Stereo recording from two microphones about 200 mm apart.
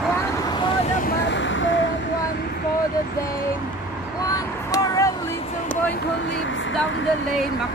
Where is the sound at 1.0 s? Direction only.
60° left (ahead or behind).